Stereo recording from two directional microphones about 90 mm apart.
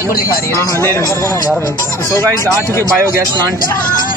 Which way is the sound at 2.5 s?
30° left (ahead or behind).